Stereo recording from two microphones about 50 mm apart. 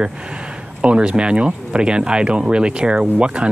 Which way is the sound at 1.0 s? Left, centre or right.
Centre.